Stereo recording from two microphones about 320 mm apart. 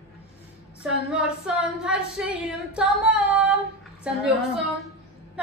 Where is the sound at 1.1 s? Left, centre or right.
Centre.